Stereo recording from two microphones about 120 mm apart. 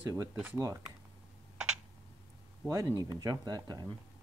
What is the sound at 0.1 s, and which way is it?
Speech, 25° right (ahead or behind).